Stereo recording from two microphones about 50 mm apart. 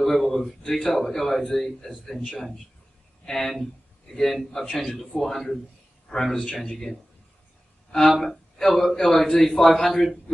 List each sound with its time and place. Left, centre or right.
0.0 s speech: centre
3.3 s a man's voice: centre
6.1 s a man's voice: left; by 10.1 s centre